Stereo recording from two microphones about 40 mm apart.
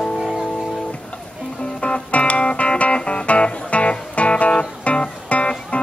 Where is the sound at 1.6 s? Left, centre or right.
Left.